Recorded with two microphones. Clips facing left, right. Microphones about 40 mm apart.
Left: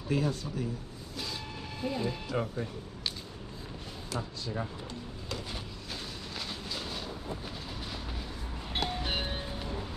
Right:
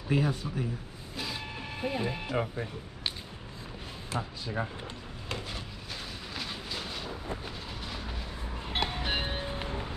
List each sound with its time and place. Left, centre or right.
0.1 s speech: centre
1.1 s music: right
2.4 s speech: right
4.1 s speech: right
6.3 s train: centre
8.5 s music: right